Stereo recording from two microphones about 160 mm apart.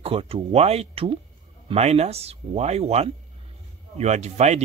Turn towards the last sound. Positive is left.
turn(degrees=-45)  # may be behind; listen again after turning